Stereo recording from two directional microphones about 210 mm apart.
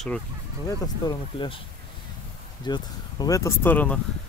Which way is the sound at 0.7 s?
20° left (ahead or behind).